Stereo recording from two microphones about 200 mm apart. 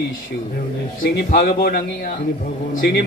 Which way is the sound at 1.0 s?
50° left (ahead or behind).